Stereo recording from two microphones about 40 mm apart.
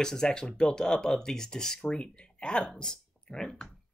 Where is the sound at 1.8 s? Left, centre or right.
Left.